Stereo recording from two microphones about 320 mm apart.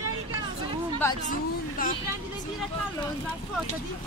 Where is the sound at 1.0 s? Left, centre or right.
Centre.